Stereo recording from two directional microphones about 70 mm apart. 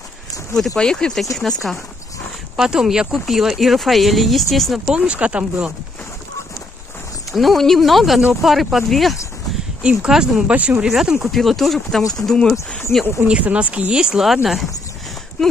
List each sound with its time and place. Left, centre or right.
0.7 s speech: centre
2.5 s speech: centre
4.9 s speech: centre
7.3 s speech: centre
10.5 s speech: right
10.8 s speech: centre
12.9 s speech: left
13.3 s speech: centre